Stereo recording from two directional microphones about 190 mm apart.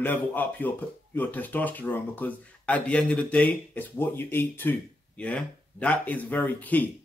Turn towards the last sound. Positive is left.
turn(degrees=10)  # may be behind; listen again after turning